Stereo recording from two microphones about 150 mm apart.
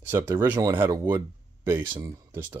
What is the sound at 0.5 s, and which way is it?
Speech, 25° right (ahead or behind).